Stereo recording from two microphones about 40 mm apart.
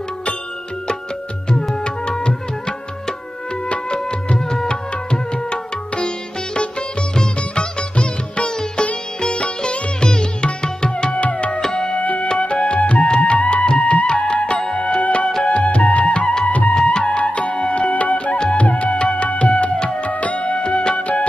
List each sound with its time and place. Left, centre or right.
2.0 s music: left
3.6 s music: left
9.2 s sitar: left
11.2 s music: left
11.6 s music: left
12.0 s music: left
12.3 s music: left